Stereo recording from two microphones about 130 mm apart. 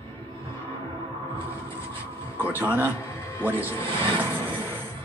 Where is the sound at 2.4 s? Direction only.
15° right (ahead or behind).